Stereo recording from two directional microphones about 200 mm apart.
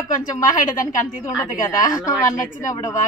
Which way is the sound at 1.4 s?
15° left (ahead or behind).